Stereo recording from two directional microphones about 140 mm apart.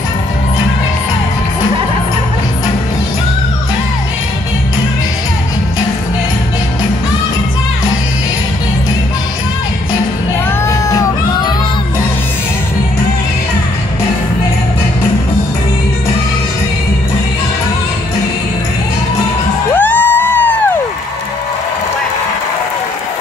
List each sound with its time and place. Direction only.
10.7 s music: 25° left (ahead or behind)
19.7 s music: 15° left (ahead or behind)